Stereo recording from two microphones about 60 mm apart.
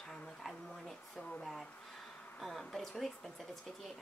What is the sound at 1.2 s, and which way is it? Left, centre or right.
Speech, centre.